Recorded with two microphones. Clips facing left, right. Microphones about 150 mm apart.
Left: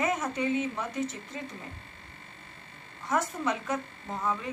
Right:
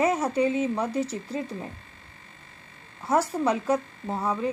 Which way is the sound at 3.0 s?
40° right (ahead or behind).